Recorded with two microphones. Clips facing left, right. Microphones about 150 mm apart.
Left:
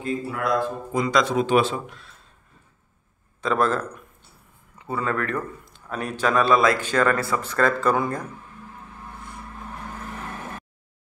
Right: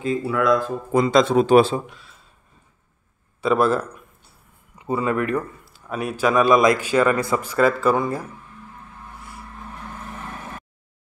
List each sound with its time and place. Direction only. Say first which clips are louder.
0.0 s speech: right 5 dB; 90° right
1.0 s speech: right 4 dB; 30° right (ahead or behind)
1.9 s speech: even; centre (ahead or behind)
3.3 s a man's voice: right 4 dB; 10° right (ahead or behind)